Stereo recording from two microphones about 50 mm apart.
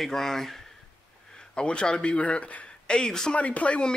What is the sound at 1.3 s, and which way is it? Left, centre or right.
A man's voice, centre.